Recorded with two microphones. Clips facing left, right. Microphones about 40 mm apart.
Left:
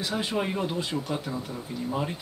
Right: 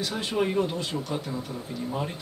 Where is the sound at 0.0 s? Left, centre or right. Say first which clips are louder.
Right 1 dB; centre.